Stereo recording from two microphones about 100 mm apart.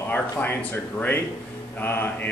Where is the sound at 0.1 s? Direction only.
15° left (ahead or behind).